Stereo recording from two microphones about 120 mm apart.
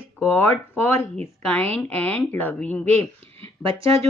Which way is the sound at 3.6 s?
50° right (ahead or behind).